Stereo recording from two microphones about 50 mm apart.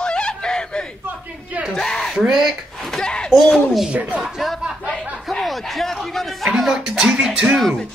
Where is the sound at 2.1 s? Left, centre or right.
Centre.